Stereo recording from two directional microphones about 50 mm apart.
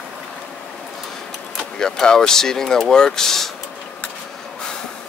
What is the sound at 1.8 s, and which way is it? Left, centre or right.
Speech, centre.